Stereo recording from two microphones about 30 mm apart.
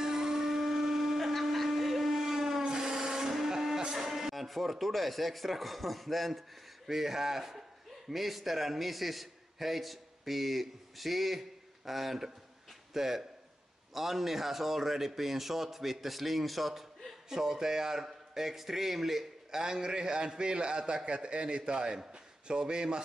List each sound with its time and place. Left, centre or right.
0.0 s a sound: centre
2.6 s wood: right
3.4 s music: centre
4.5 s speech: centre
6.9 s a man's voice: centre
17.3 s a man's voice: centre
19.5 s a man's voice: right